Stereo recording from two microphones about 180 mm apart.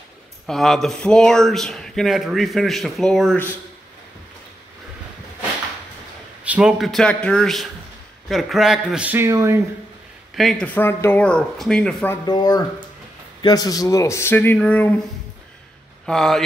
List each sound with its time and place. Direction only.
0.5 s speech: centre (ahead or behind)
6.4 s speech: 5° right (ahead or behind)
10.3 s speech: centre (ahead or behind)
12.3 s speech: 25° left (ahead or behind); by 15.0 s 5° left (ahead or behind)
16.1 s speech: centre (ahead or behind)